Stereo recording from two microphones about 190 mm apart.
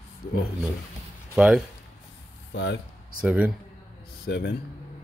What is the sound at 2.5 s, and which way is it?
Speech, 70° left (ahead or behind).